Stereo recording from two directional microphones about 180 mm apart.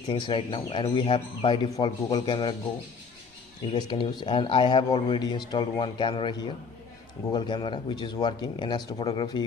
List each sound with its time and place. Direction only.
0.1 s speech: 30° left (ahead or behind)
3.7 s speech: 25° left (ahead or behind)